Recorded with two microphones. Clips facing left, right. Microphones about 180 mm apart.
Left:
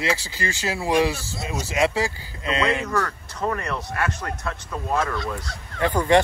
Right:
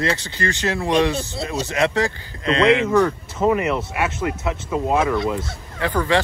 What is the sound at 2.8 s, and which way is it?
Speech, 20° right (ahead or behind).